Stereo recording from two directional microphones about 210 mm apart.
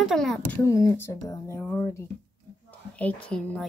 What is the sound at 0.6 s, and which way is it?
A woman's voice, 15° left (ahead or behind).